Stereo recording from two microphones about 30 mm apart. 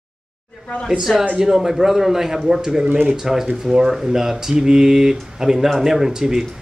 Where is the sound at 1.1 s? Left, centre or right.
Centre.